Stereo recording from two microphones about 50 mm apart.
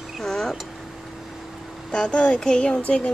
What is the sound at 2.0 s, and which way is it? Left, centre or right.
Speech, centre.